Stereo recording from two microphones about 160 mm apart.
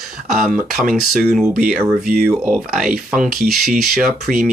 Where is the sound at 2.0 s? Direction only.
70° right (ahead or behind).